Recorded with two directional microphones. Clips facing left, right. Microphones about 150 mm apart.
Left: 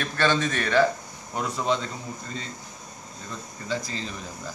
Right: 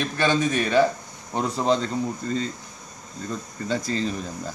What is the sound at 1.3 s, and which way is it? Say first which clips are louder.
Speech: right 4 dB; 35° right (ahead or behind).